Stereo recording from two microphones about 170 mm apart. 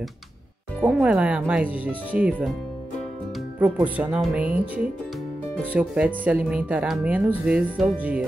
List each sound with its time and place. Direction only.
0.7 s speech: 5° right (ahead or behind)
3.5 s speech: 10° right (ahead or behind)
5.7 s speech: 10° right (ahead or behind)